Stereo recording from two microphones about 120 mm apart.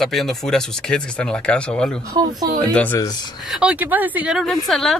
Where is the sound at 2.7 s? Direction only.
15° left (ahead or behind).